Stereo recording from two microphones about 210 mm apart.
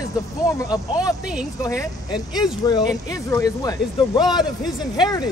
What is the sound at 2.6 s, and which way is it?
Speech, 20° left (ahead or behind).